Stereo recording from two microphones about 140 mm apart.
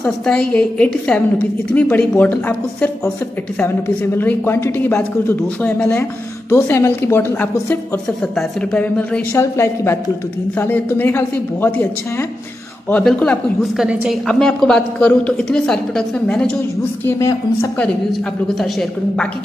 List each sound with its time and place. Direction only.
0.0 s a woman's voice: 5° left (ahead or behind)
17.0 s a woman's voice: 20° left (ahead or behind)
18.5 s a woman's voice: centre (ahead or behind)